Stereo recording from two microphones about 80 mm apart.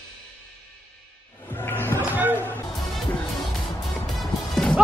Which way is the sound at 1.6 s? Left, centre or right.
Left.